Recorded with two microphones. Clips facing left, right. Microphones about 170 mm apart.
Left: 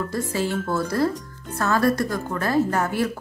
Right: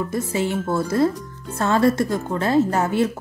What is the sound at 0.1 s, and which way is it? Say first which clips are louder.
A woman's voice: right 2 dB; 20° right (ahead or behind).